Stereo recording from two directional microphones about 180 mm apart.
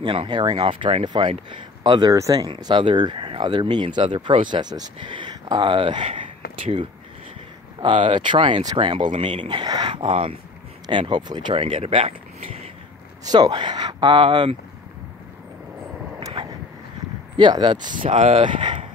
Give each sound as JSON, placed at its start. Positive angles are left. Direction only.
{"t": 0.0, "sound": "speech", "side_deg": -25}
{"t": 13.2, "sound": "speech", "side_deg": -20}
{"t": 16.2, "sound": "vehicle", "side_deg": -20}
{"t": 17.4, "sound": "speech", "side_deg": -25}